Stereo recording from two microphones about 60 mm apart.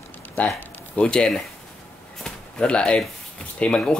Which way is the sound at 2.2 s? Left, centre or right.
Centre.